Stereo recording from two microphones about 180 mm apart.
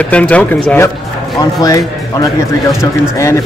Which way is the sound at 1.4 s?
20° left (ahead or behind).